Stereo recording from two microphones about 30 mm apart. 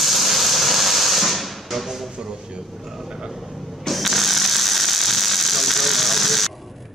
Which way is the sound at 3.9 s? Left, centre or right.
Centre.